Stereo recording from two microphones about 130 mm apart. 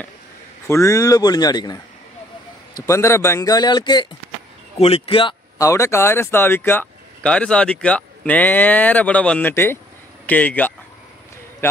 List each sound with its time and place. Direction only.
0.7 s speech: 25° left (ahead or behind)
2.9 s speech: 20° left (ahead or behind)
4.7 s a man's voice: 50° left (ahead or behind)
5.6 s speech: 25° left (ahead or behind)